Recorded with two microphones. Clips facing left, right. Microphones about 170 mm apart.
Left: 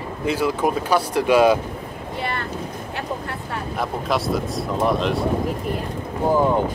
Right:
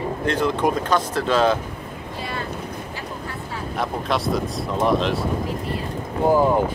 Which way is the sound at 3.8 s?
Centre (ahead or behind).